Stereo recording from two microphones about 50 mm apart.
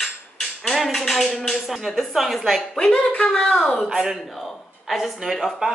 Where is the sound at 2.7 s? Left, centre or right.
Centre.